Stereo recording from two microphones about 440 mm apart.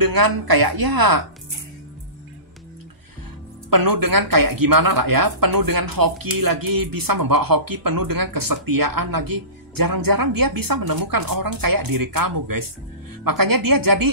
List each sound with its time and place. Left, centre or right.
0.0 s speech: right
3.7 s speech: right